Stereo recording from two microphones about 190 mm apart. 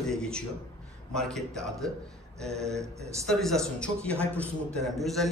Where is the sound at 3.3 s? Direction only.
Centre (ahead or behind).